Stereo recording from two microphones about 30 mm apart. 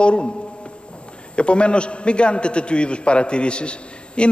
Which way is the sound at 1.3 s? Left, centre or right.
Left.